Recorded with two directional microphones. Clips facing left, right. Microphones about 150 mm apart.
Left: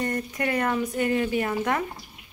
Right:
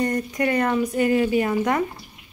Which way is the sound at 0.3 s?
5° left (ahead or behind).